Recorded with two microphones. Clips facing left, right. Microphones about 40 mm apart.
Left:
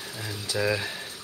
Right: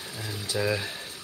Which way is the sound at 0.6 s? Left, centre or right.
Centre.